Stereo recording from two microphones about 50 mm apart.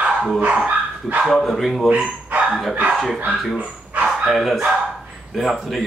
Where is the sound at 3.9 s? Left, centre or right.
Right.